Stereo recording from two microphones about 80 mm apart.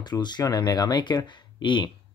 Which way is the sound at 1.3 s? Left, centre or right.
Left.